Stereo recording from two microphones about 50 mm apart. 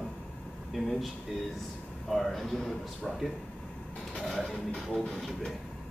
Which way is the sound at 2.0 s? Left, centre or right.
Centre.